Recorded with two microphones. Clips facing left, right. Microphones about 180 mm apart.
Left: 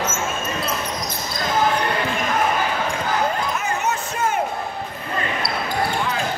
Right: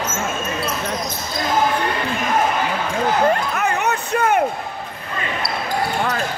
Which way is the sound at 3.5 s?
60° right (ahead or behind).